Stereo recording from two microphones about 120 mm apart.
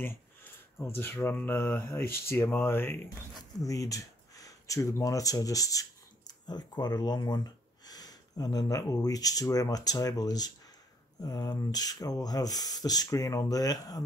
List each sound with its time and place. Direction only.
0.0 s speech: 20° left (ahead or behind)